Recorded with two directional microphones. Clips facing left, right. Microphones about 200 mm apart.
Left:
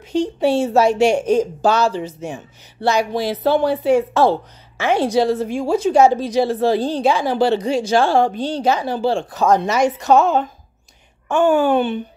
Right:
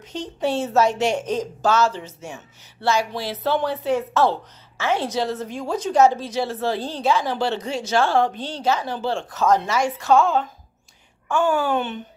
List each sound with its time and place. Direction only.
0.1 s a woman's voice: 10° left (ahead or behind)